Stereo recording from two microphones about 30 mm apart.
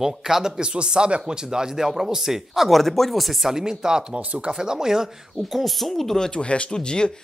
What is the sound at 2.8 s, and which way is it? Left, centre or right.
Speech, centre.